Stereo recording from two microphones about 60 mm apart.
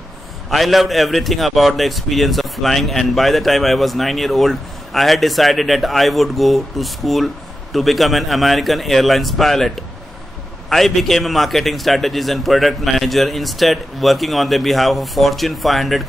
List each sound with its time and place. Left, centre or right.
0.5 s a man's voice: centre